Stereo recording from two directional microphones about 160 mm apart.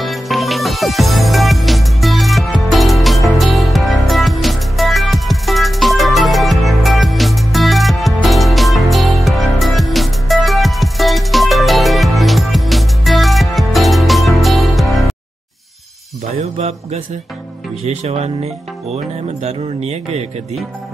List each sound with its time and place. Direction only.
0.0 s music: centre (ahead or behind)
16.3 s mantra: 40° right (ahead or behind)
17.8 s speech: 40° right (ahead or behind)